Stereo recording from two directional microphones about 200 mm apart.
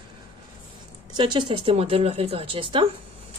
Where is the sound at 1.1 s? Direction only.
25° right (ahead or behind).